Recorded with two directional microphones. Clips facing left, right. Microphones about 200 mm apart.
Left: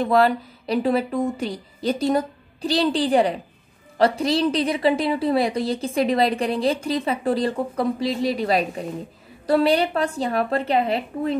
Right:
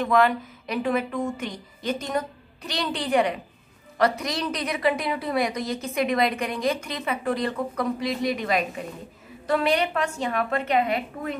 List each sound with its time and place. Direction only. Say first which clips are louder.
0.0 s a woman's voice: left 3 dB; 35° left (ahead or behind)